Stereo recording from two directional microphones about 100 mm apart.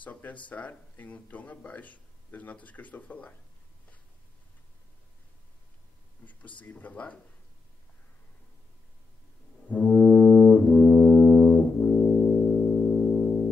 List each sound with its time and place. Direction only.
0.0 s speech: 15° left (ahead or behind)
6.6 s speech: 15° left (ahead or behind)
9.7 s brass instrument: 15° left (ahead or behind)